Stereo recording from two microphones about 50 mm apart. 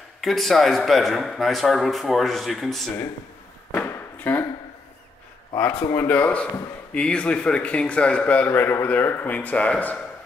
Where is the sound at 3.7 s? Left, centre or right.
Left.